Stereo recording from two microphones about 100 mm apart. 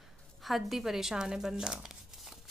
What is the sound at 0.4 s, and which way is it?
Speech, centre (ahead or behind).